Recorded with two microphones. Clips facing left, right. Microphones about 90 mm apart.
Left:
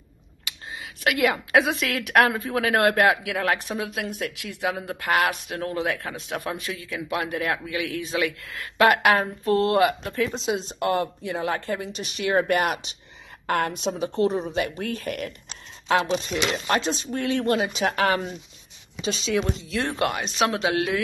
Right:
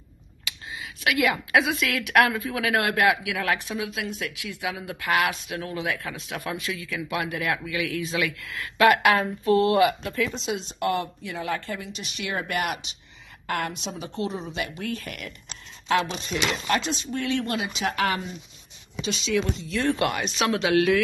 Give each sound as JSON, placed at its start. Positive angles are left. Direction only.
{"t": 0.7, "sound": "a woman's voice", "side_deg": 40}